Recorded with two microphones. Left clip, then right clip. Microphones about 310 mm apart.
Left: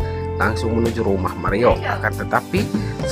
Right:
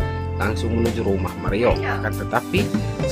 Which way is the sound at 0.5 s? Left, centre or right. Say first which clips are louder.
Left 3 dB; centre.